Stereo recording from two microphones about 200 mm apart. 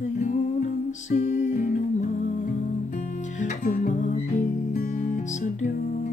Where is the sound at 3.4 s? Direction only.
40° left (ahead or behind).